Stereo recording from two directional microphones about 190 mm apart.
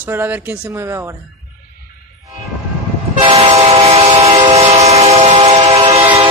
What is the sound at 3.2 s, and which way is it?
Train, 30° right (ahead or behind).